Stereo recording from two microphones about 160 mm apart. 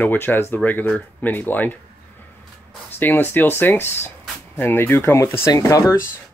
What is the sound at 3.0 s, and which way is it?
Speech, 15° left (ahead or behind).